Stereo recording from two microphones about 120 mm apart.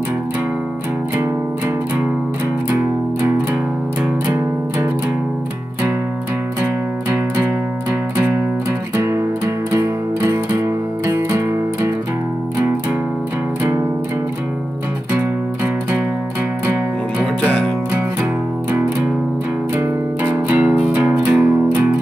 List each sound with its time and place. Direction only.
2.7 s music: 20° right (ahead or behind)
6.6 s music: 15° right (ahead or behind)
8.9 s music: 20° right (ahead or behind)
15.1 s music: 15° right (ahead or behind)
17.2 s music: 10° left (ahead or behind)
20.3 s music: 15° right (ahead or behind)